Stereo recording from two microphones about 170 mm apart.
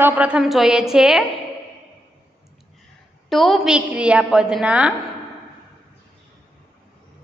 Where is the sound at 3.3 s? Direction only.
Centre (ahead or behind).